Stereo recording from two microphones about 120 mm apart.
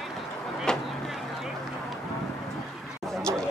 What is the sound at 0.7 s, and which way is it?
Vehicle, 5° left (ahead or behind).